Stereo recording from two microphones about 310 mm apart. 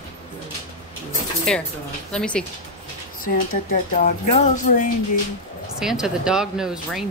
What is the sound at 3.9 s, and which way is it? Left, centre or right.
Speech, left.